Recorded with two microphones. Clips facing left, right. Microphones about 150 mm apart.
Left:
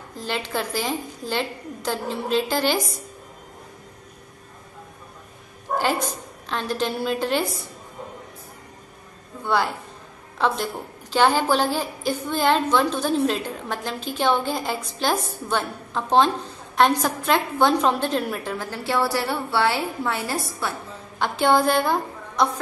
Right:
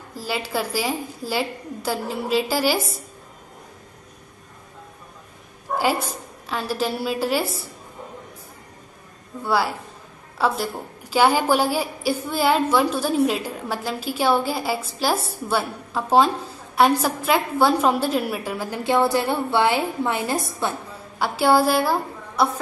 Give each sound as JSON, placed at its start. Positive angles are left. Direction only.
{"t": 0.1, "sound": "a woman's voice", "side_deg": -5}
{"t": 5.8, "sound": "a woman's voice", "side_deg": -10}
{"t": 9.4, "sound": "a woman's voice", "side_deg": -5}
{"t": 21.2, "sound": "a woman's voice", "side_deg": -5}